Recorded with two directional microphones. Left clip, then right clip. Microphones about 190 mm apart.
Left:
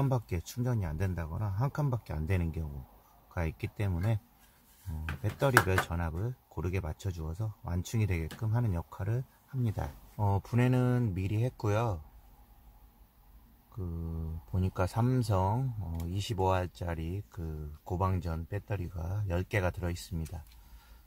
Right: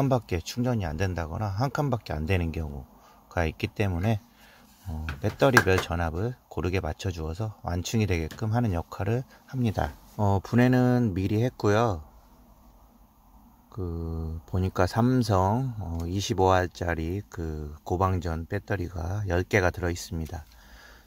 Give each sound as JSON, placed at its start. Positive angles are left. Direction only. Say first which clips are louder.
{"t": 0.0, "sound": "speech", "louder": "right 8 dB", "side_deg": -15}
{"t": 5.2, "sound": "speech", "louder": "right 6 dB", "side_deg": -20}
{"t": 14.5, "sound": "speech", "louder": "right 8 dB", "side_deg": -20}